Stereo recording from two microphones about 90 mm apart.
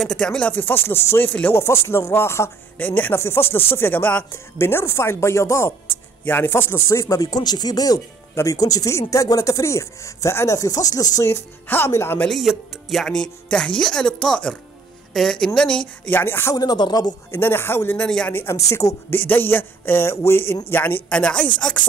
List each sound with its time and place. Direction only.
0.0 s speech: 10° left (ahead or behind)
4.3 s speech: 30° left (ahead or behind)
11.6 s speech: 25° left (ahead or behind)
12.3 s a woman's voice: centre (ahead or behind)
16.1 s speech: 25° left (ahead or behind)
16.5 s speech: 50° left (ahead or behind)
17.3 s speech: 25° left (ahead or behind)
18.0 s a woman's voice: 10° left (ahead or behind)
18.3 s a woman's voice: 25° left (ahead or behind)